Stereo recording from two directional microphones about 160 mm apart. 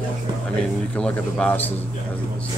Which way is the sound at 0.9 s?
5° left (ahead or behind).